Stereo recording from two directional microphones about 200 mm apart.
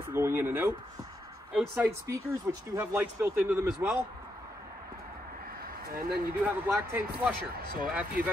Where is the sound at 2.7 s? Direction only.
10° right (ahead or behind).